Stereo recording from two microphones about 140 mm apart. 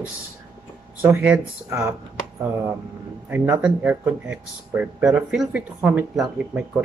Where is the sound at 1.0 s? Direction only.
10° right (ahead or behind).